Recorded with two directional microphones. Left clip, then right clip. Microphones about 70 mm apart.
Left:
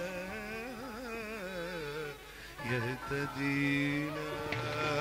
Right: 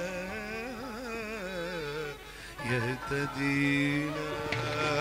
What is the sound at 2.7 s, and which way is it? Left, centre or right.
Music, left.